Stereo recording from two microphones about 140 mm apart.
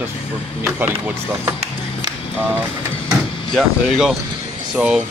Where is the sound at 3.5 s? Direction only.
5° right (ahead or behind).